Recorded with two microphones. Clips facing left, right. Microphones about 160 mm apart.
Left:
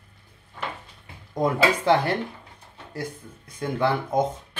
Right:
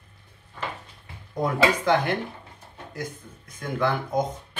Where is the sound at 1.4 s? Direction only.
30° left (ahead or behind).